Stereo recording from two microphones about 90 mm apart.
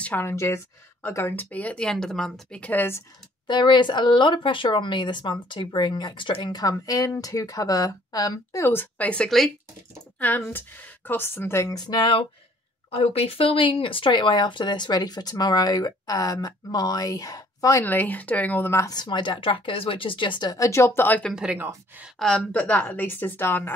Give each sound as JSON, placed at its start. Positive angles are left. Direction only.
{"t": 0.0, "sound": "a woman's voice", "side_deg": 25}
{"t": 2.6, "sound": "a woman's voice", "side_deg": 20}
{"t": 3.4, "sound": "speech", "side_deg": 60}
{"t": 8.6, "sound": "a woman's voice", "side_deg": 20}
{"t": 11.7, "sound": "speech", "side_deg": 50}
{"t": 12.9, "sound": "speech", "side_deg": 90}
{"t": 17.8, "sound": "a woman's voice", "side_deg": 20}
{"t": 18.9, "sound": "speech", "side_deg": 55}
{"t": 20.5, "sound": "a woman's voice", "side_deg": 35}
{"t": 21.5, "sound": "speech", "side_deg": -25}
{"t": 22.2, "sound": "a woman's voice", "side_deg": 10}